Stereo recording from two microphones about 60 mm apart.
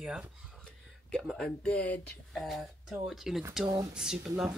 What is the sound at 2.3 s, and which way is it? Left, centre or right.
Speech, centre.